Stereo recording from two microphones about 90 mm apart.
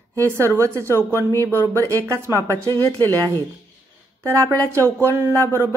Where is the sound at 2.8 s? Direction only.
30° left (ahead or behind).